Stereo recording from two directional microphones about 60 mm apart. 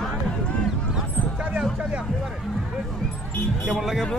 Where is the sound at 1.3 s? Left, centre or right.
Centre.